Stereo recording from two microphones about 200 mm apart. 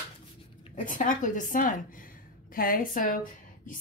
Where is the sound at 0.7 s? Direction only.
40° left (ahead or behind).